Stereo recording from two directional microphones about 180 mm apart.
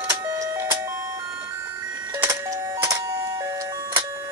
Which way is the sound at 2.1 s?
15° right (ahead or behind).